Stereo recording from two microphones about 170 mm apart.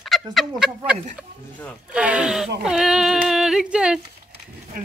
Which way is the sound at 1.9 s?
5° right (ahead or behind).